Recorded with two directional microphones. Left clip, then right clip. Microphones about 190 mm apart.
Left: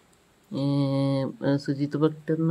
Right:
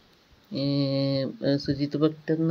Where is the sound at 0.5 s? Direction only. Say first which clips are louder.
Even; 15° left (ahead or behind).